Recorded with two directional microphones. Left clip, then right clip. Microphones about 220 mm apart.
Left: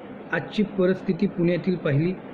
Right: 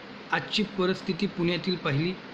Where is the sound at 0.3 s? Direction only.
5° right (ahead or behind).